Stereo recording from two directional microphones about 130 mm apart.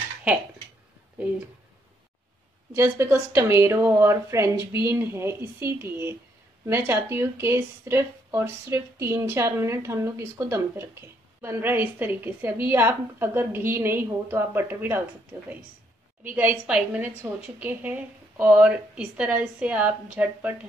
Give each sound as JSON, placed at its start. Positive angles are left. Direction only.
{"t": 2.7, "sound": "speech", "side_deg": -20}
{"t": 16.3, "sound": "speech", "side_deg": -10}